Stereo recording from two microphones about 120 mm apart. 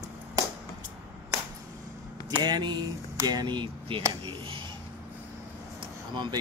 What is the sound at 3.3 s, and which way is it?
Speech, 35° right (ahead or behind).